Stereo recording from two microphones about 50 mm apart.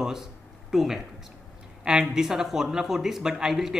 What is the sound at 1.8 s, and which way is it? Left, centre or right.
Speech, centre.